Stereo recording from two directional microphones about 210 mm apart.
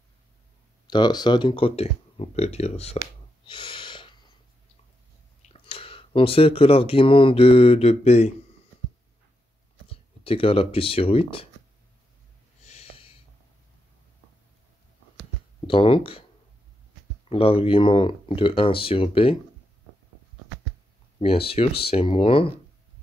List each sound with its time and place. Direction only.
0.8 s speech: 20° left (ahead or behind)
3.4 s snort: 25° left (ahead or behind)
5.5 s speech: 25° left (ahead or behind)
10.2 s speech: 25° left (ahead or behind)
12.6 s snort: 30° left (ahead or behind)
15.6 s speech: 25° left (ahead or behind)
17.3 s speech: 25° left (ahead or behind)
21.2 s speech: 25° left (ahead or behind)